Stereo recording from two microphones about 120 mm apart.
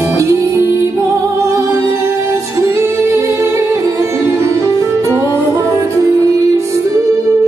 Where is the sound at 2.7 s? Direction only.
20° right (ahead or behind).